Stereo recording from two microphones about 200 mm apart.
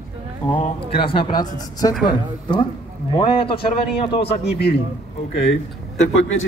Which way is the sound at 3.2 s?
25° left (ahead or behind).